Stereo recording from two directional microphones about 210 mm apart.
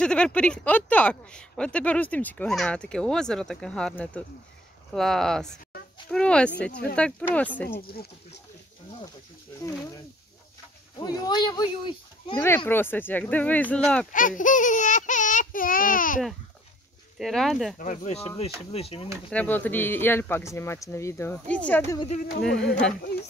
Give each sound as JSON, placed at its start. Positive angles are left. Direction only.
{"t": 0.0, "sound": "speech", "side_deg": 5}
{"t": 7.8, "sound": "speech", "side_deg": 50}
{"t": 11.0, "sound": "speech", "side_deg": 20}
{"t": 12.4, "sound": "speech", "side_deg": 10}
{"t": 14.1, "sound": "speech", "side_deg": 40}
{"t": 17.2, "sound": "speech", "side_deg": 0}
{"t": 17.7, "sound": "speech", "side_deg": 35}
{"t": 19.3, "sound": "speech", "side_deg": 10}